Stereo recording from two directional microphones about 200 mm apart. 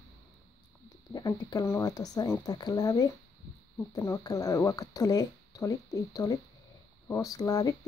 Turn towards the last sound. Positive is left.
turn(degrees=15)  # may be behind; listen again after turning